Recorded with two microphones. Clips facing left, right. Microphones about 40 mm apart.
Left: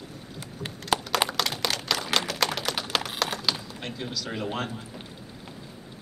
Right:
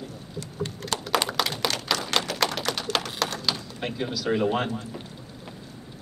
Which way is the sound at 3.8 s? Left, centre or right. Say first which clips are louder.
Right 5 dB; centre.